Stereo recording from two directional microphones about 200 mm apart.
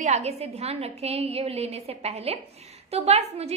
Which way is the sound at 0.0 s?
35° right (ahead or behind).